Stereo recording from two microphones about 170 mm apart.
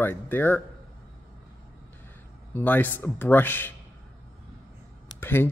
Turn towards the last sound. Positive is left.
turn(degrees=10)  # may be behind; listen again after turning